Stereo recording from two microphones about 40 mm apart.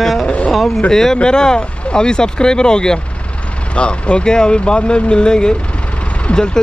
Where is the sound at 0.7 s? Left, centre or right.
Left.